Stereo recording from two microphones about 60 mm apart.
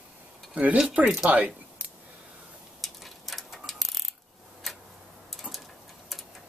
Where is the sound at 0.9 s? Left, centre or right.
Centre.